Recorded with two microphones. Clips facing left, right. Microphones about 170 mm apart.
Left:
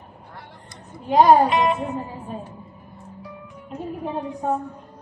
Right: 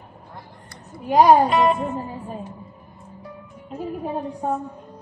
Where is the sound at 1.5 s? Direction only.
40° right (ahead or behind).